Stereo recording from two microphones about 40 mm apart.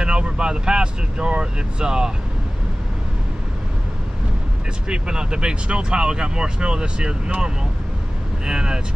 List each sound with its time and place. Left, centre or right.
0.0 s speech: right
4.8 s speech: right
8.5 s speech: right